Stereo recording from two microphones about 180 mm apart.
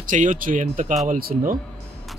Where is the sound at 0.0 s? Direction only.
45° right (ahead or behind).